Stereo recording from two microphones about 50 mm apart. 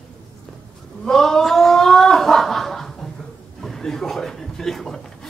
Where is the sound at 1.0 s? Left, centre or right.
Centre.